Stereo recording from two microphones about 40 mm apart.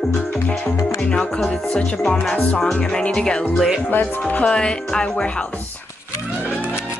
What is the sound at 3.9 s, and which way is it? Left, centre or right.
Speech, left.